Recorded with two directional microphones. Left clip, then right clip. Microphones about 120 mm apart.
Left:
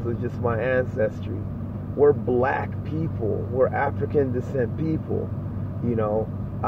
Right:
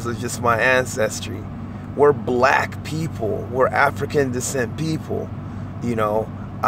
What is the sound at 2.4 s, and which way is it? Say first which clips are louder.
Speech: right 8 dB; 40° right (ahead or behind).